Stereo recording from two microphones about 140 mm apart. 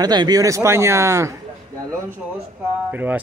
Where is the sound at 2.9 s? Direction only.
10° right (ahead or behind).